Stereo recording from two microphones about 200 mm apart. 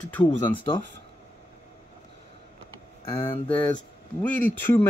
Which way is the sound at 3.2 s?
25° left (ahead or behind).